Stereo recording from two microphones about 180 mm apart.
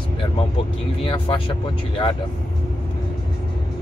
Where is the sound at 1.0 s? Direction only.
30° left (ahead or behind).